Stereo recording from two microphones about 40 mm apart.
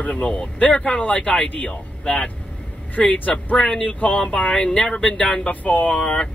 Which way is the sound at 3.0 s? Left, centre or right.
Centre.